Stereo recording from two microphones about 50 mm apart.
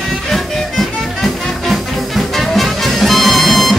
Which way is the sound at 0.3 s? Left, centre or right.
Centre.